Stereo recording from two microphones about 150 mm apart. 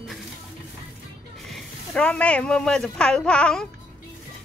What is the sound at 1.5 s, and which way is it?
A woman's voice, 5° left (ahead or behind).